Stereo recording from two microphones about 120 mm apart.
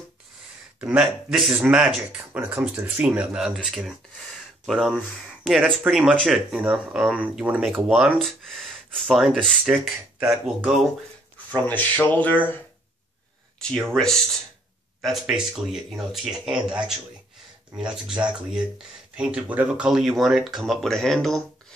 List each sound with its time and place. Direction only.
0.7 s speech: 5° right (ahead or behind)
11.5 s speech: 15° left (ahead or behind)
13.6 s speech: 5° left (ahead or behind)